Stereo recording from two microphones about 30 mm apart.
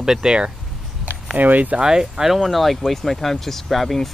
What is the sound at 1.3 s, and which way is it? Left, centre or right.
Speech, right.